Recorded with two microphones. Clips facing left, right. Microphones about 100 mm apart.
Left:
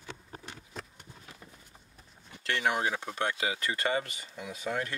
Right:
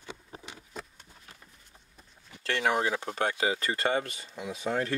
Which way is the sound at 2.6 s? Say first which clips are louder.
Right 2 dB; 55° right (ahead or behind).